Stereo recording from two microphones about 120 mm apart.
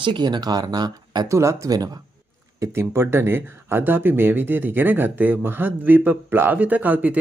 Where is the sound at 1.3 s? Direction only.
25° right (ahead or behind).